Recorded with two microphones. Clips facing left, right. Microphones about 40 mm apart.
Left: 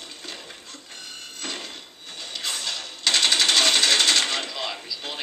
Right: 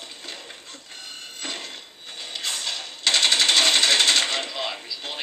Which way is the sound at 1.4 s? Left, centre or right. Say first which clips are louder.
Even; centre.